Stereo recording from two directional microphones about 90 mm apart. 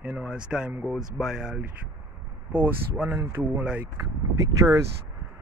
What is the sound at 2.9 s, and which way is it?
Speech, 10° right (ahead or behind).